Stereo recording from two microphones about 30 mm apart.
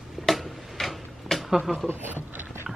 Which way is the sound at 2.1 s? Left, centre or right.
Right.